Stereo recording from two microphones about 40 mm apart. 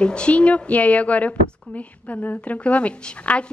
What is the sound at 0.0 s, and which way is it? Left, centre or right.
A woman's voice, left.